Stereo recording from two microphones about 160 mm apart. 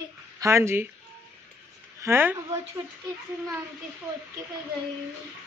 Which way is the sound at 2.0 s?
15° right (ahead or behind).